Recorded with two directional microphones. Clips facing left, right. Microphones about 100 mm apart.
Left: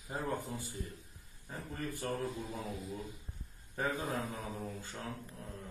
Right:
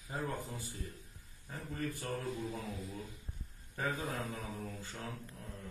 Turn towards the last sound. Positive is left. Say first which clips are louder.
# left 1 dB
turn(degrees=25)  # may be behind; listen again after turning